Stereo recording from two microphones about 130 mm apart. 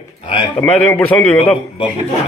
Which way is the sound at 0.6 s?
10° left (ahead or behind).